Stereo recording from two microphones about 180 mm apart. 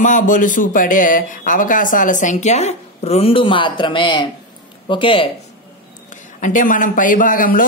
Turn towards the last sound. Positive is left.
turn(degrees=50)  # may be behind; listen again after turning